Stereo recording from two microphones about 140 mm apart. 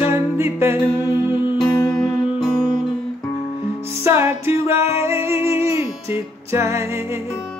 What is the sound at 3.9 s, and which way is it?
Music, 15° right (ahead or behind).